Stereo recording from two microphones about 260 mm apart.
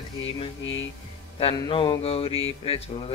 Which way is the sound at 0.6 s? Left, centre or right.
Left.